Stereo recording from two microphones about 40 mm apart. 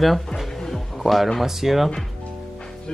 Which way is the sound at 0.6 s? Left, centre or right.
Centre.